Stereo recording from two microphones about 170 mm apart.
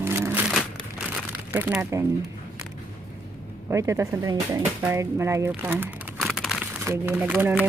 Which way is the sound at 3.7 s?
15° right (ahead or behind).